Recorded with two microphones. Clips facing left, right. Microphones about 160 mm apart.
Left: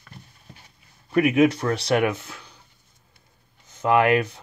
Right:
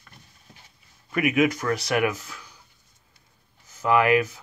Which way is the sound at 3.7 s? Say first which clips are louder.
Left 1 dB; 25° left (ahead or behind).